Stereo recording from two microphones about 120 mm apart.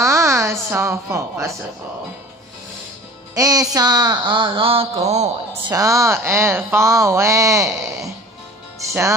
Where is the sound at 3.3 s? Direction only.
30° right (ahead or behind); by 5.3 s 65° right (ahead or behind).